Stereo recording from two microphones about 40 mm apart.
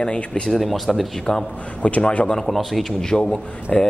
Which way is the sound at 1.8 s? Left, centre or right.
Left.